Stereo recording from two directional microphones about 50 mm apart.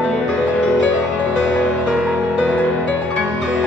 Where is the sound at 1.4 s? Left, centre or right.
Centre.